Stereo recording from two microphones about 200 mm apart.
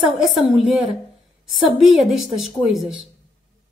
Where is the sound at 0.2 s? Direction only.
Centre (ahead or behind).